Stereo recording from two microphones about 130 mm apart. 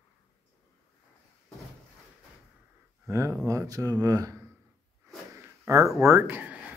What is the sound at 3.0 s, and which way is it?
Speech, 20° right (ahead or behind).